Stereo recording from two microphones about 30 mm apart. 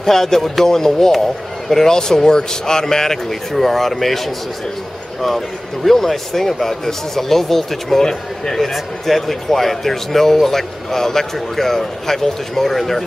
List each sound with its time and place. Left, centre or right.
0.0 s a man's voice: centre
5.9 s a man's voice: centre
8.5 s a man's voice: centre